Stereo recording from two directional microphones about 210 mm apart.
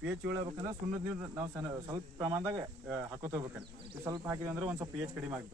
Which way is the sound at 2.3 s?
10° right (ahead or behind).